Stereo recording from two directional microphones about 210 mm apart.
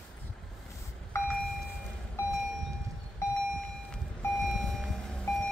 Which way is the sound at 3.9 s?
Centre (ahead or behind).